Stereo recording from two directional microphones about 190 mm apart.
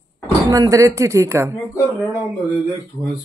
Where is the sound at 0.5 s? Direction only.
20° right (ahead or behind).